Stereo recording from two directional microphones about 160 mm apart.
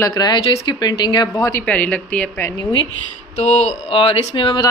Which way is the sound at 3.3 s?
45° left (ahead or behind).